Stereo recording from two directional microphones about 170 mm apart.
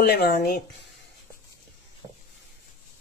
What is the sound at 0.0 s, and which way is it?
Speech, 70° left (ahead or behind).